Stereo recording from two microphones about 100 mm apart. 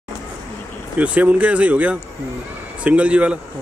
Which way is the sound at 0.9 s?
15° right (ahead or behind).